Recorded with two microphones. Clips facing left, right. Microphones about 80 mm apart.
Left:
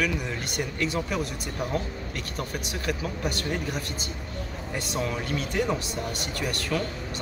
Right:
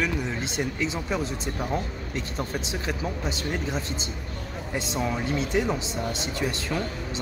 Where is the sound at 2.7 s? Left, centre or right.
Right.